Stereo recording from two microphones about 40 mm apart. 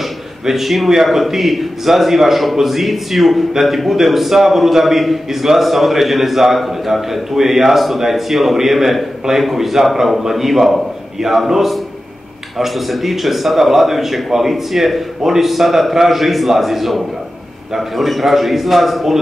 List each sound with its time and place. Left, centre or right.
0.5 s a man's voice: centre